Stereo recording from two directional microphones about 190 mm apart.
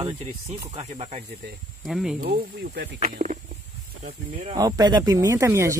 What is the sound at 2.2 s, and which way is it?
Speech, 55° right (ahead or behind).